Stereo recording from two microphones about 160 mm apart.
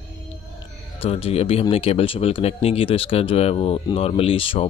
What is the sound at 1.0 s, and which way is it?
Speech, 40° left (ahead or behind).